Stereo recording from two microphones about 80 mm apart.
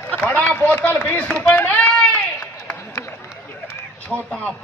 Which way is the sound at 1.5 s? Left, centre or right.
Centre.